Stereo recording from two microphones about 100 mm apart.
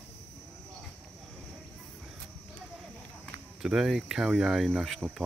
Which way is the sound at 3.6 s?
5° right (ahead or behind).